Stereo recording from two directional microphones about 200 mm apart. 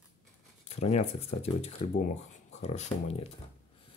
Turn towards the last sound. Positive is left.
turn(degrees=30)  # may be behind; listen again after turning